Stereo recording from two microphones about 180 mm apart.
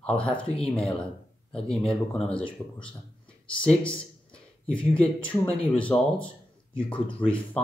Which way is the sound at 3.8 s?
5° left (ahead or behind).